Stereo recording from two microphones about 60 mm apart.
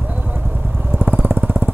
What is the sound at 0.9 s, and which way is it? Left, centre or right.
Vehicle, right.